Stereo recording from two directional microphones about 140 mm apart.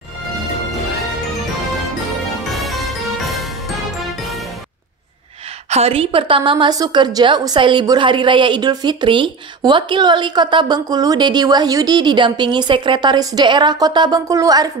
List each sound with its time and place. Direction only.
2.5 s music: centre (ahead or behind)
5.7 s a woman's voice: 45° right (ahead or behind); by 14.7 s 25° right (ahead or behind)